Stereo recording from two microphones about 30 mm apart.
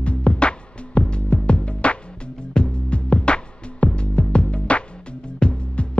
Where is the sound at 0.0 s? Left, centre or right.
Left.